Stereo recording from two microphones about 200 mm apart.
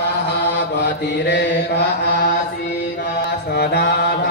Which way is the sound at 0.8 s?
60° left (ahead or behind).